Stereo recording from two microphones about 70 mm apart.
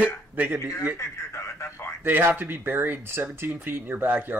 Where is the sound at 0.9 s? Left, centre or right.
Left.